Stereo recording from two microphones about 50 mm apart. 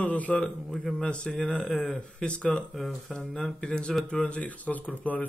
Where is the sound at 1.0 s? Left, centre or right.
Centre.